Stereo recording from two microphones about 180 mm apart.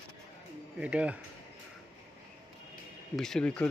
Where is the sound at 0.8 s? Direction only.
5° right (ahead or behind).